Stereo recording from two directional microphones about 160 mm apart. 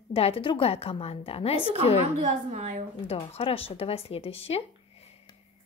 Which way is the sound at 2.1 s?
50° right (ahead or behind).